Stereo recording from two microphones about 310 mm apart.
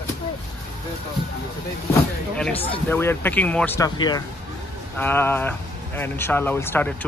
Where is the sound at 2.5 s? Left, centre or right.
Centre.